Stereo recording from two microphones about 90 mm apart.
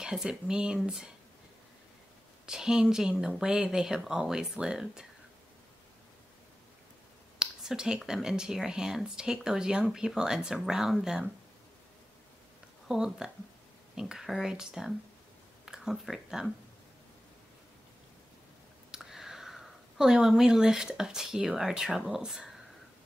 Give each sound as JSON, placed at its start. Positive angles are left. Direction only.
{"t": 0.0, "sound": "speech", "side_deg": -10}
{"t": 2.4, "sound": "speech", "side_deg": -5}
{"t": 7.3, "sound": "speech", "side_deg": -10}
{"t": 12.8, "sound": "speech", "side_deg": -5}
{"t": 18.9, "sound": "speech", "side_deg": -5}